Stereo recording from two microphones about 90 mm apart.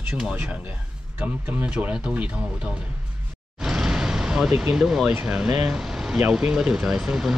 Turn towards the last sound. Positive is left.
turn(degrees=-10)  # may be behind; listen again after turning